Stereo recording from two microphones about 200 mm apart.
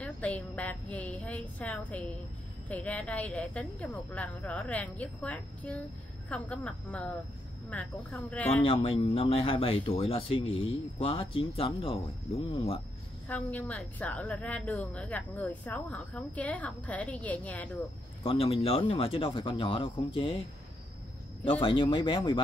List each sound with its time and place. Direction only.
0.0 s a woman's voice: 5° left (ahead or behind)
8.6 s speech: 30° left (ahead or behind)
13.3 s a woman's voice: 5° left (ahead or behind)
18.2 s speech: 25° left (ahead or behind)
21.5 s speech: 25° left (ahead or behind)